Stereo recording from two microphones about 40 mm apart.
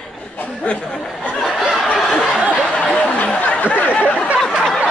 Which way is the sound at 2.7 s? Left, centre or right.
Left.